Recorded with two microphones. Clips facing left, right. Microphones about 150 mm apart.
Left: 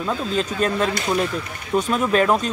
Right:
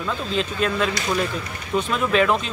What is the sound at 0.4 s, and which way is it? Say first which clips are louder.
Speech: left 1 dB; 40° left (ahead or behind).